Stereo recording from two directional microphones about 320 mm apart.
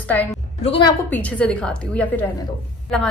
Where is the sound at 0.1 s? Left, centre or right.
Centre.